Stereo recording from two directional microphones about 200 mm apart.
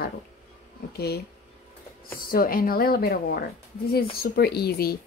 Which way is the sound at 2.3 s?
45° left (ahead or behind).